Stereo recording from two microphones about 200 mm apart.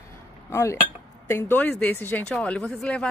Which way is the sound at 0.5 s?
15° left (ahead or behind).